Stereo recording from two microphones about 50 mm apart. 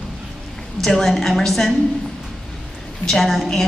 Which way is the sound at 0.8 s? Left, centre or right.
Centre.